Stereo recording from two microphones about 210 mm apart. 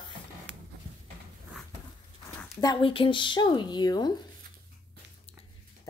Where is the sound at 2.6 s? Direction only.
20° left (ahead or behind).